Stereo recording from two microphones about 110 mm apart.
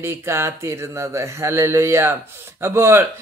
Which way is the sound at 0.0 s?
25° right (ahead or behind).